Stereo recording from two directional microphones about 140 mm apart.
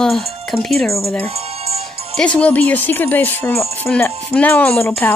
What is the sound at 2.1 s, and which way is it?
Speech, 5° left (ahead or behind).